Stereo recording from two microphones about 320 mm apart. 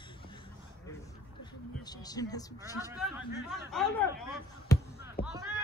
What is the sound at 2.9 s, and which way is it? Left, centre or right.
A man's voice, centre.